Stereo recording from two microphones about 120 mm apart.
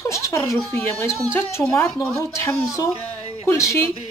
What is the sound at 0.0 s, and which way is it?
Speech, 25° left (ahead or behind).